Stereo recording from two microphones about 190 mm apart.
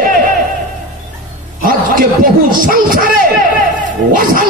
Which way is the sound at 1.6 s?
45° right (ahead or behind).